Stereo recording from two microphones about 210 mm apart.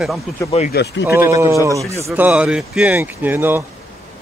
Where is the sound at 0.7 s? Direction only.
50° left (ahead or behind).